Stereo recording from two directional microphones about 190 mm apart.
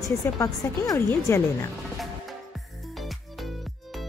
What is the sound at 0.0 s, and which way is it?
Speech, 20° left (ahead or behind).